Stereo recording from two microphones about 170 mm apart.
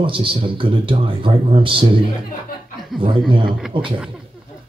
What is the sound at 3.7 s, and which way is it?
Speech, 30° right (ahead or behind).